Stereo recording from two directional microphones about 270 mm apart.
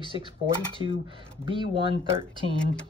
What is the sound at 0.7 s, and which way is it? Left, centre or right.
Speech, centre.